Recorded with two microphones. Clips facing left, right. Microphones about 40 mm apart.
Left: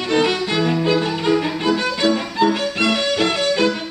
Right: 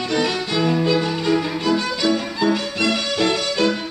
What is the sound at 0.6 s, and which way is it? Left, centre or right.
Violin, centre.